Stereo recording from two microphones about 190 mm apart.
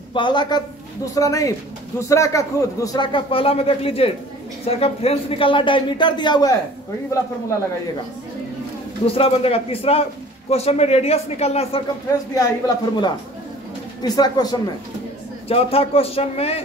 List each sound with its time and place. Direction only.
0.1 s a man's voice: 25° left (ahead or behind)
9.0 s speech: 30° left (ahead or behind)
12.1 s speech: 20° left (ahead or behind)